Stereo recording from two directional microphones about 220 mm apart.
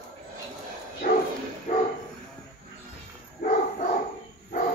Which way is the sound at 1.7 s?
40° left (ahead or behind).